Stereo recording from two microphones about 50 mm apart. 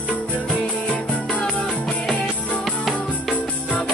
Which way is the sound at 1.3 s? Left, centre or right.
Centre.